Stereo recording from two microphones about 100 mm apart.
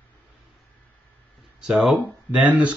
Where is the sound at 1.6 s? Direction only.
5° right (ahead or behind).